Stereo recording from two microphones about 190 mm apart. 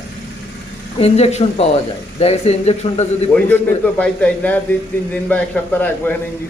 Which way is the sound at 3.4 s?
10° left (ahead or behind).